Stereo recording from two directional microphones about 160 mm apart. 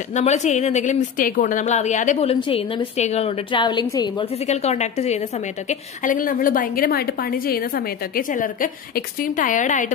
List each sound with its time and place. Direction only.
0.1 s a woman's voice: 45° left (ahead or behind); by 4.3 s 25° left (ahead or behind)
4.5 s a woman's voice: 45° left (ahead or behind)
5.7 s a woman's voice: 55° left (ahead or behind)